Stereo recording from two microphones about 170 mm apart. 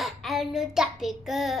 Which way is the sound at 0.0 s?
Centre (ahead or behind).